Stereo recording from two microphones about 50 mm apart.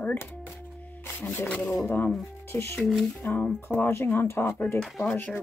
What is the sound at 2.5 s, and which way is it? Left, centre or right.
Speech, left.